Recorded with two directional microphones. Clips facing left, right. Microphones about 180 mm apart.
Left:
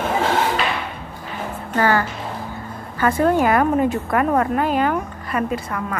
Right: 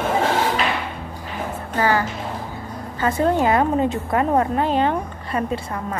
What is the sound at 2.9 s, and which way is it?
A woman's voice, 20° right (ahead or behind).